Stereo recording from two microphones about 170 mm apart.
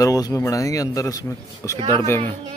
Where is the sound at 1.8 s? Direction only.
30° right (ahead or behind).